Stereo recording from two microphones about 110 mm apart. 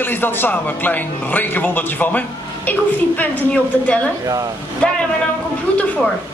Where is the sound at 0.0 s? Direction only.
20° left (ahead or behind).